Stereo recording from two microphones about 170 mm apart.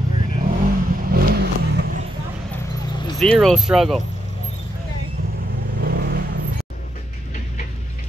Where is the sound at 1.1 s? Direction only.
60° right (ahead or behind).